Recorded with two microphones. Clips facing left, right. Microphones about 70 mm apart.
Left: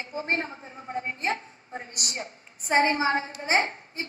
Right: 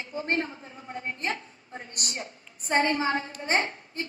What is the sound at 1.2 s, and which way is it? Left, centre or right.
A woman's voice, left.